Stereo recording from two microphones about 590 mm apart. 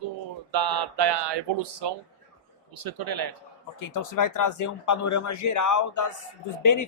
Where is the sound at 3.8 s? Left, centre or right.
Left.